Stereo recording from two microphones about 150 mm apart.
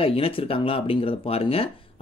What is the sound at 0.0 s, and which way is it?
Speech, 40° left (ahead or behind).